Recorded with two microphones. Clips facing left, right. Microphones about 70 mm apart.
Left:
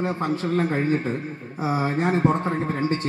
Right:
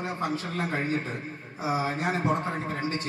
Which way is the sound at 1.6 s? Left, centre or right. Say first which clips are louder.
Left 5 dB; left.